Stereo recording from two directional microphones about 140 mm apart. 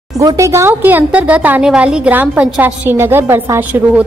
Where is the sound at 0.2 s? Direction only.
25° right (ahead or behind).